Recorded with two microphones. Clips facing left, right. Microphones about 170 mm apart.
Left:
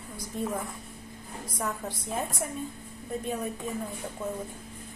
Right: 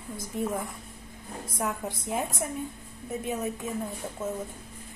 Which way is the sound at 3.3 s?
Centre (ahead or behind).